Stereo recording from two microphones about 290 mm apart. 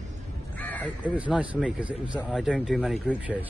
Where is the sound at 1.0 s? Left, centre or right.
Centre.